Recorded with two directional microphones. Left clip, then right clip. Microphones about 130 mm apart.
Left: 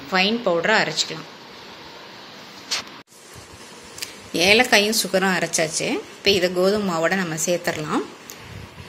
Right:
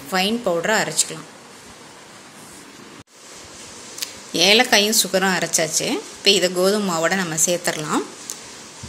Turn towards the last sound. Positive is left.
turn(degrees=0)  # may be behind; listen again after turning